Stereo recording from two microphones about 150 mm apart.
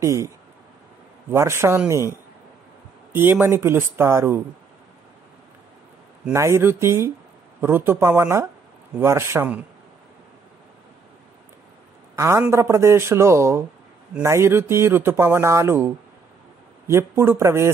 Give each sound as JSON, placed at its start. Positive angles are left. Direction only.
{"t": 0.0, "sound": "speech", "side_deg": -20}
{"t": 1.3, "sound": "speech", "side_deg": -15}
{"t": 6.3, "sound": "speech", "side_deg": -20}
{"t": 12.2, "sound": "speech", "side_deg": -15}